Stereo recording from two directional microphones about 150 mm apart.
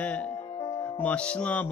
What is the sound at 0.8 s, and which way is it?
Speech, 10° left (ahead or behind).